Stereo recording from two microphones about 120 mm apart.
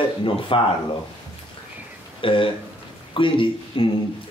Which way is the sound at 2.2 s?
45° left (ahead or behind).